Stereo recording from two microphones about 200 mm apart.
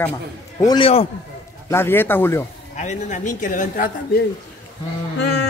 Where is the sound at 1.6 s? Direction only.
10° left (ahead or behind).